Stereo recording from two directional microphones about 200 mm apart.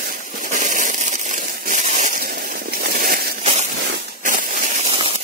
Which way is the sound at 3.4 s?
35° right (ahead or behind).